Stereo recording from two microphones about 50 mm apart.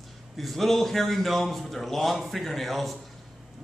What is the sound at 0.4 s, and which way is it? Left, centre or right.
A man's voice, centre.